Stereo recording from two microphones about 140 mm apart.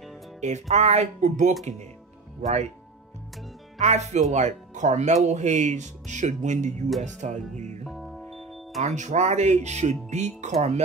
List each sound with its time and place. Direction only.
0.4 s speech: 55° right (ahead or behind)
3.8 s speech: 55° right (ahead or behind)
7.8 s music: centre (ahead or behind)
8.8 s speech: 55° right (ahead or behind)